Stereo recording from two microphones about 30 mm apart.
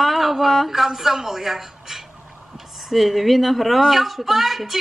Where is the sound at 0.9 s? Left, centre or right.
Centre.